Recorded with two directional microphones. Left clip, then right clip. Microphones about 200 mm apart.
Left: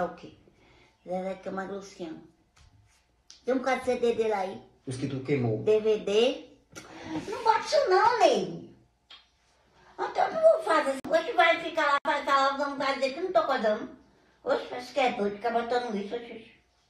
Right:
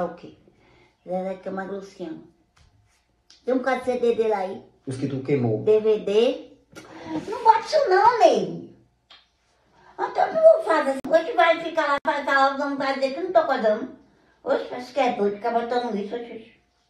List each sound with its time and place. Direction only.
0.0 s a woman's voice: 5° left (ahead or behind)
3.4 s a woman's voice: 5° left (ahead or behind)
10.0 s a woman's voice: 10° left (ahead or behind)